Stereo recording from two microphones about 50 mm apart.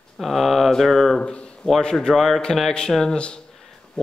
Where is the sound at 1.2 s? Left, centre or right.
Left.